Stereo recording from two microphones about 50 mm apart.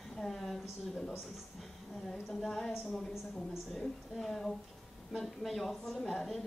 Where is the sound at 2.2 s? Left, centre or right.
Centre.